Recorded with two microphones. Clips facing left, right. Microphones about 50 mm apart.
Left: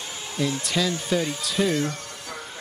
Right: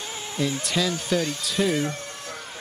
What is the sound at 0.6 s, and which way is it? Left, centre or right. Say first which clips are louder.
Speech: even; centre.